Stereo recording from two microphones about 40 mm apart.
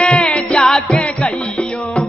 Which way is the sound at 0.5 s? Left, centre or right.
Centre.